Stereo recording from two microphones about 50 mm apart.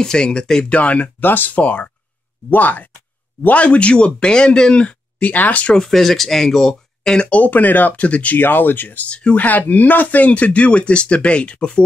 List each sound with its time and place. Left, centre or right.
0.0 s speech: centre
0.7 s speech: left
1.2 s speech: left
5.8 s speech: centre; by 8.4 s left
8.4 s speech: left
9.1 s speech: left